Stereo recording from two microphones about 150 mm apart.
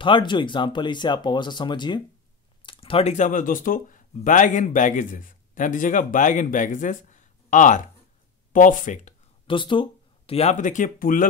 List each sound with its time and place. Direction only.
0.0 s speech: 30° left (ahead or behind); by 9.1 s 55° left (ahead or behind)
9.5 s speech: 35° left (ahead or behind); by 11.2 s 65° left (ahead or behind)